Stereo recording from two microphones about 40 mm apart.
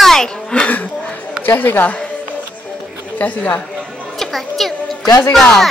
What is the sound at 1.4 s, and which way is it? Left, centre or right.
Speech, left.